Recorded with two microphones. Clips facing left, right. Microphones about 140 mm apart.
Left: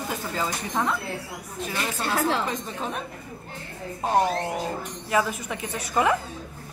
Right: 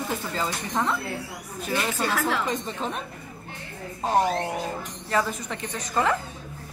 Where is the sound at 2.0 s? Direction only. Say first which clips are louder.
Left 4 dB; 30° left (ahead or behind).